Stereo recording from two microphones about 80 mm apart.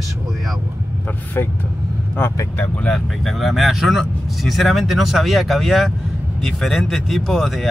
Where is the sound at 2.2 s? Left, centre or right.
Left.